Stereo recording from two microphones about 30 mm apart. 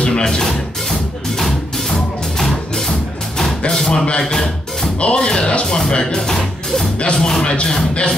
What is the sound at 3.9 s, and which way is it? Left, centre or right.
Speech, left.